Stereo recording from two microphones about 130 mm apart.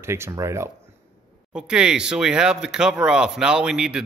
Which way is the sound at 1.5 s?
5° right (ahead or behind).